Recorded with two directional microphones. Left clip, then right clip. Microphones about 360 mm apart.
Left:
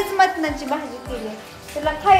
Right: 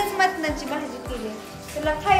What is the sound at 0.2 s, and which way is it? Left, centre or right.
Speech, centre.